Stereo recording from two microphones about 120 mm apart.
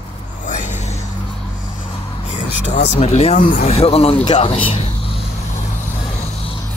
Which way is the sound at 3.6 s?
55° left (ahead or behind).